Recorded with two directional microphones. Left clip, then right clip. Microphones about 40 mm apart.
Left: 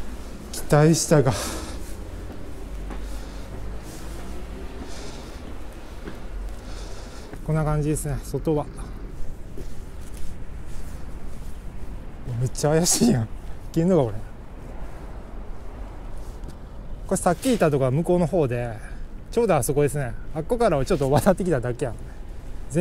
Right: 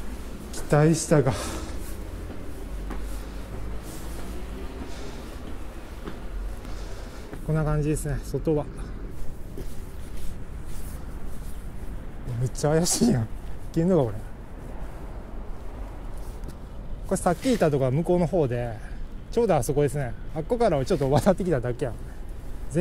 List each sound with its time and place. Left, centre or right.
0.5 s speech: left
4.8 s vehicle: left
7.4 s speech: left
12.4 s speech: left
17.1 s speech: left